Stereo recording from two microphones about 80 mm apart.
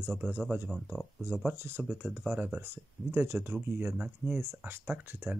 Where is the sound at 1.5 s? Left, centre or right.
Right.